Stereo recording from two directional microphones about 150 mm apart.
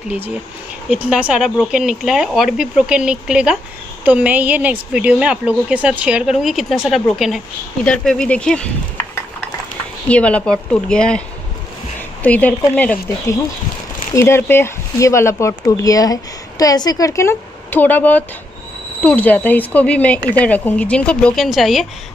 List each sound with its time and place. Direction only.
1.0 s a woman's voice: 5° right (ahead or behind)
10.0 s speech: 10° left (ahead or behind)